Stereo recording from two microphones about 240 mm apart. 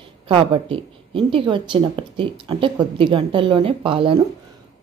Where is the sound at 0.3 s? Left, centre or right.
Right.